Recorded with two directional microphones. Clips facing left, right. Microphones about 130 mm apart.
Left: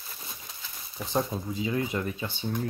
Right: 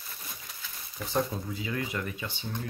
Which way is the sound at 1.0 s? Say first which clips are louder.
Left 1 dB; 20° left (ahead or behind).